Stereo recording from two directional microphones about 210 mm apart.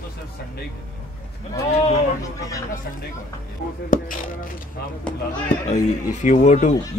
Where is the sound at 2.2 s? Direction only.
15° left (ahead or behind).